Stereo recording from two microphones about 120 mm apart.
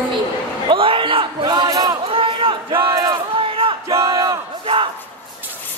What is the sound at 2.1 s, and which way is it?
Speech, 45° right (ahead or behind).